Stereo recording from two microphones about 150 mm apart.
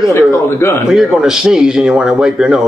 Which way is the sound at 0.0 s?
20° left (ahead or behind).